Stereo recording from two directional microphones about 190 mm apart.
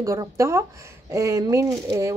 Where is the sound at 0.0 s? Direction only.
15° right (ahead or behind).